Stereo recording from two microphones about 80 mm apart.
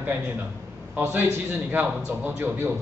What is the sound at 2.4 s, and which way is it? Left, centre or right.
Speech, right.